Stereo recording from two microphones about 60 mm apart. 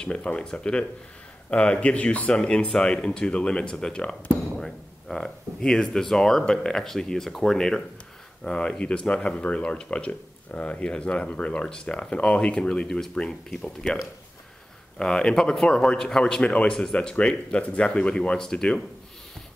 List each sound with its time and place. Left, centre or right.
0.0 s speech: centre
15.0 s speech: centre